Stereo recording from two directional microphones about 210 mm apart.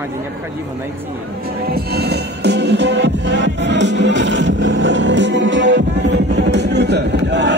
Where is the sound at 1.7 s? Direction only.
50° right (ahead or behind).